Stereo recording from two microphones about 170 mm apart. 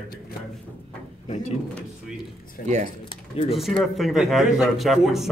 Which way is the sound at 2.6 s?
45° right (ahead or behind).